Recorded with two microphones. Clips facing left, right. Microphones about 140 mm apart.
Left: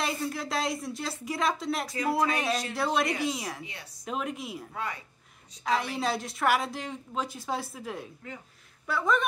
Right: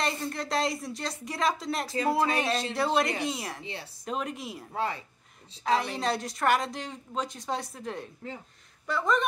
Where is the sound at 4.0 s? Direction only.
Centre (ahead or behind).